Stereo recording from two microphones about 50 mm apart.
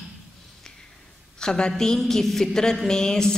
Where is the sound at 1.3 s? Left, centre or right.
Centre.